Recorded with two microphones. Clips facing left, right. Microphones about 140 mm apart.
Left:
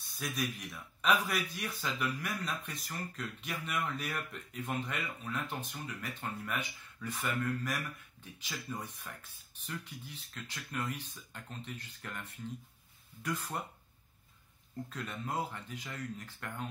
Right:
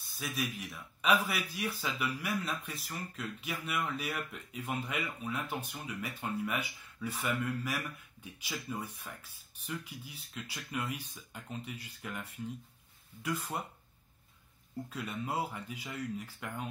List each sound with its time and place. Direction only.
0.0 s a sound: centre (ahead or behind)
0.6 s speech: 5° right (ahead or behind)
14.9 s speech: 10° right (ahead or behind)